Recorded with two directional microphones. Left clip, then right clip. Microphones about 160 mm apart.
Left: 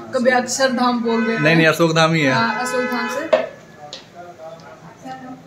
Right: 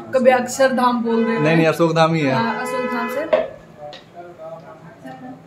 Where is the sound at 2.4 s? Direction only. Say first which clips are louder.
Left 2 dB; 25° right (ahead or behind).